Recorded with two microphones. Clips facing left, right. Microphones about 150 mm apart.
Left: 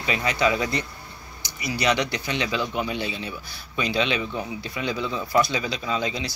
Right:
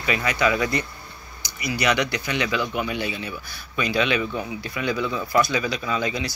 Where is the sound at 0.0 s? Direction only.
25° left (ahead or behind).